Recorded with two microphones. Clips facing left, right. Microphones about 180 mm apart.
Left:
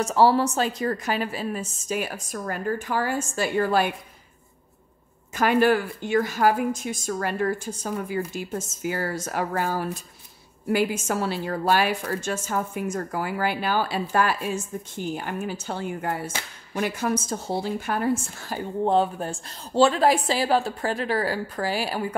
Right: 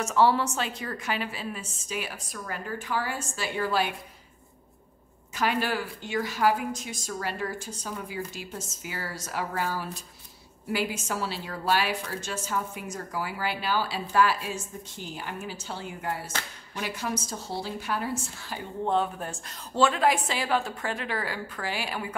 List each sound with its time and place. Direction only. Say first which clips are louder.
0.0 s a woman's voice: left 4 dB; 35° left (ahead or behind)
5.3 s a woman's voice: left 8 dB; 50° left (ahead or behind)
18.9 s a woman's voice: left 5 dB; 30° left (ahead or behind)